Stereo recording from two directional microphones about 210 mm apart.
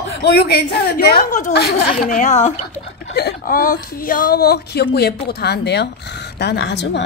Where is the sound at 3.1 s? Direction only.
45° left (ahead or behind).